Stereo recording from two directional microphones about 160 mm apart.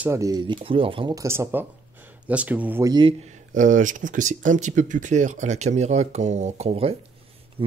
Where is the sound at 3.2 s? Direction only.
50° right (ahead or behind).